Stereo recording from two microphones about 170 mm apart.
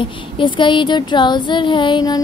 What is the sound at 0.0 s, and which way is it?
Speech, 30° left (ahead or behind).